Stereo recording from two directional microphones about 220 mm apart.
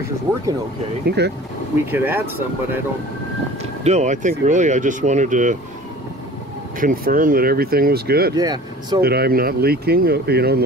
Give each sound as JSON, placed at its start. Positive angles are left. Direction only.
{"t": 1.0, "sound": "speech", "side_deg": -50}
{"t": 1.9, "sound": "speech", "side_deg": -10}
{"t": 3.8, "sound": "speech", "side_deg": -30}
{"t": 6.8, "sound": "speech", "side_deg": -40}
{"t": 8.4, "sound": "speech", "side_deg": -20}
{"t": 9.0, "sound": "speech", "side_deg": -45}